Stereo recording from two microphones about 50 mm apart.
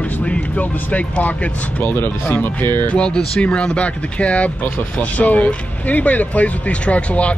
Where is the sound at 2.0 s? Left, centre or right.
Left.